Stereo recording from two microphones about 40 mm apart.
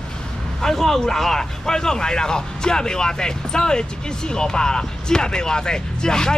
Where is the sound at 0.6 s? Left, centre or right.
Centre.